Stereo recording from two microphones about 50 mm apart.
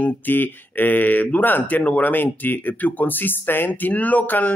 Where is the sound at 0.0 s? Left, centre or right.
Left.